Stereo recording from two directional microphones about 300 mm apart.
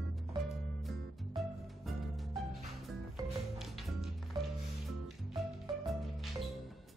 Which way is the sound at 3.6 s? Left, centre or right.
Centre.